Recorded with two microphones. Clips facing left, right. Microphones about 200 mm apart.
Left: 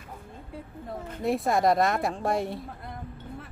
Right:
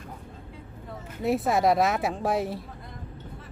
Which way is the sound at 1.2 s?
Centre (ahead or behind).